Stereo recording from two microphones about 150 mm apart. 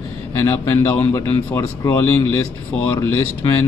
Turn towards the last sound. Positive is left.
turn(degrees=15)  # may be behind; listen again after turning